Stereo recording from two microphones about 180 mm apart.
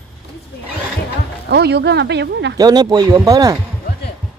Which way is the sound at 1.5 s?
65° right (ahead or behind).